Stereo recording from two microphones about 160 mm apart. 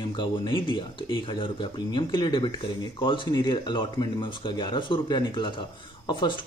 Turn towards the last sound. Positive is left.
turn(degrees=30)  # may be behind; listen again after turning